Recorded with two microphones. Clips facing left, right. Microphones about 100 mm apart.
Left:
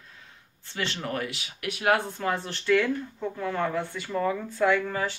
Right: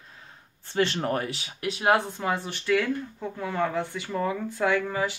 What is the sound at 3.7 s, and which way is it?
Speech, 20° right (ahead or behind).